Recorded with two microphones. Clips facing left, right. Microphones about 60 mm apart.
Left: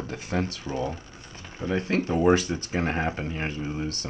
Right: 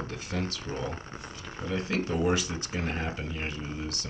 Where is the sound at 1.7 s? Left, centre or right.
Left.